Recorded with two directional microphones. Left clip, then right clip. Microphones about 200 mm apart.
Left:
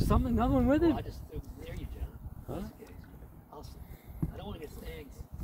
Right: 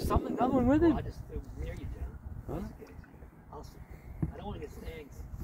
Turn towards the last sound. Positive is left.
turn(degrees=-45)  # may be behind; listen again after turning